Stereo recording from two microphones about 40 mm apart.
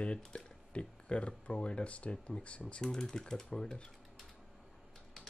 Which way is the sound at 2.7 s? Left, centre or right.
Centre.